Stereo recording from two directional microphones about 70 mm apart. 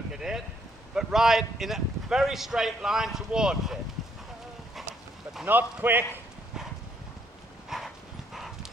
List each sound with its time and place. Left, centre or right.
0.1 s a sound: centre
0.9 s speech: centre
5.5 s a man's voice: right
7.7 s horse: centre